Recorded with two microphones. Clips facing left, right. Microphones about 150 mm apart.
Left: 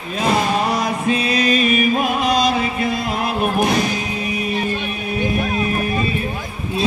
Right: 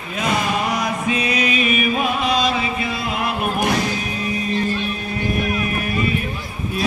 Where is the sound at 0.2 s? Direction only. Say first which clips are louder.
Left 3 dB; 30° left (ahead or behind).